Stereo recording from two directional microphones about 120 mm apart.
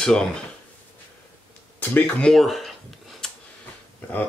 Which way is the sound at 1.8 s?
10° left (ahead or behind).